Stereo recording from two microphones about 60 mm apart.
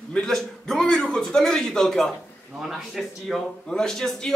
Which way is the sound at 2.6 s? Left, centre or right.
Centre.